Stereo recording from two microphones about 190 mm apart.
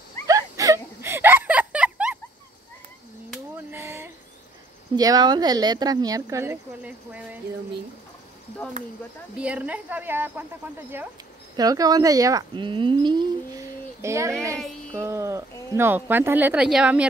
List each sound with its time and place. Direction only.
0.3 s whimper: 15° right (ahead or behind)
3.5 s a sound: 15° right (ahead or behind)
4.9 s speech: 20° right (ahead or behind)
9.4 s a woman's voice: 5° right (ahead or behind)
11.5 s speech: 20° right (ahead or behind); by 17.0 s 5° right (ahead or behind)